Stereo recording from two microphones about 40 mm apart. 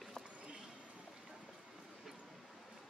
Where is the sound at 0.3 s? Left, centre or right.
Right.